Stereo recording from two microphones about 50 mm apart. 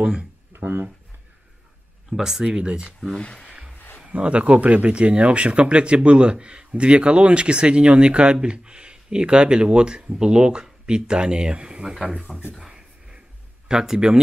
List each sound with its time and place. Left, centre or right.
0.0 s speech: centre
2.0 s speech: centre
3.2 s speech: left
3.4 s a sound: right
4.1 s speech: right
12.5 s a sound: centre
13.7 s speech: centre